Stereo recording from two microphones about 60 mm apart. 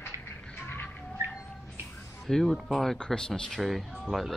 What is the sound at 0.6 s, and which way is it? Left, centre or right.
Bird, left.